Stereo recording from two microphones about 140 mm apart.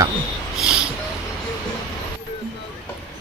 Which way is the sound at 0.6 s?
5° right (ahead or behind).